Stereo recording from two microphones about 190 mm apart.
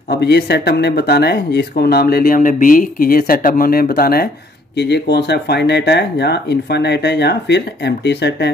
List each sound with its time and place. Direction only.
0.1 s speech: 60° left (ahead or behind)